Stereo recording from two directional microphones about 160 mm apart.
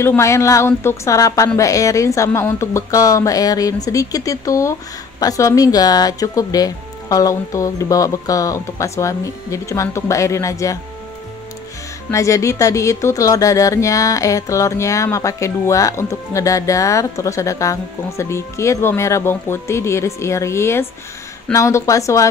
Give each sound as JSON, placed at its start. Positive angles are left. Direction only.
{"t": 0.0, "sound": "speech", "side_deg": 15}
{"t": 12.1, "sound": "speech", "side_deg": 20}